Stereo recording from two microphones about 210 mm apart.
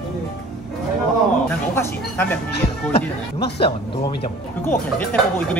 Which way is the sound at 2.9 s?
25° left (ahead or behind).